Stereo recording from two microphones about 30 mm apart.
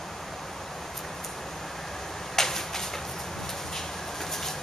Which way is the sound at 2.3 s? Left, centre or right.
Centre.